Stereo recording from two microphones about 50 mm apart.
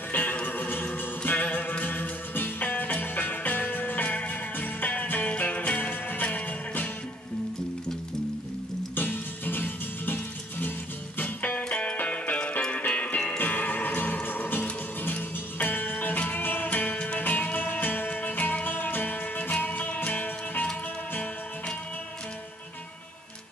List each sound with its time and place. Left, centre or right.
0.1 s music: left
8.9 s music: left
11.1 s music: left